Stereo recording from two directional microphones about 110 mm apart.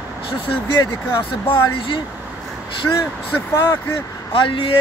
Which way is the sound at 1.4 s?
50° left (ahead or behind).